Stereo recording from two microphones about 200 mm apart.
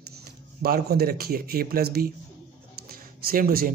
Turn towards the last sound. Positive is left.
turn(degrees=-45)  # may be behind; listen again after turning